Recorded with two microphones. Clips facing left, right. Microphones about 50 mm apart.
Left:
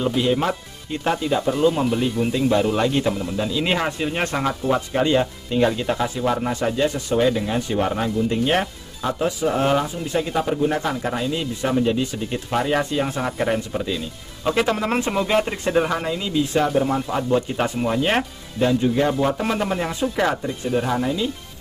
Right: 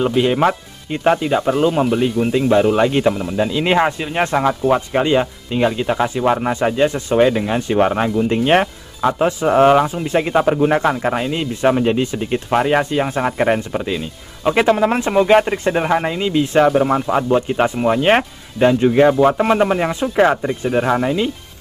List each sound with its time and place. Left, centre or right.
0.0 s speech: right; by 5.9 s centre
5.9 s speech: right
7.8 s speech: right
10.9 s speech: right